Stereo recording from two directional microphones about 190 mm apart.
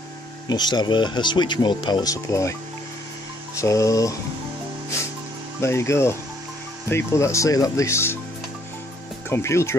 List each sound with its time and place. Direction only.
0.5 s speech: 20° left (ahead or behind)
3.5 s speech: 15° left (ahead or behind)
5.6 s speech: 15° left (ahead or behind)
9.3 s speech: 15° left (ahead or behind)